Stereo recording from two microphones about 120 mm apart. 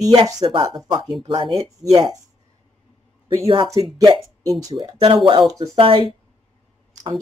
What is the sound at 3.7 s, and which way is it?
Speech, 40° right (ahead or behind).